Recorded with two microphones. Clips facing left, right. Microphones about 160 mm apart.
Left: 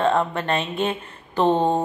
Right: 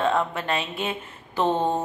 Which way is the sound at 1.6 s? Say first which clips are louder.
Left 4 dB; 15° left (ahead or behind).